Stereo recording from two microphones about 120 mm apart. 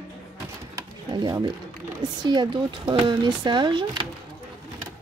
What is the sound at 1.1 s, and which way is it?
Speech, 40° right (ahead or behind).